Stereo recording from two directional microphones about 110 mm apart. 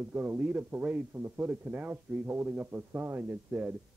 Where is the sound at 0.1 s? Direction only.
20° right (ahead or behind).